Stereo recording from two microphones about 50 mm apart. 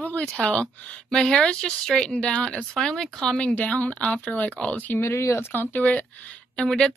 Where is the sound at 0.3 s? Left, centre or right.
Left.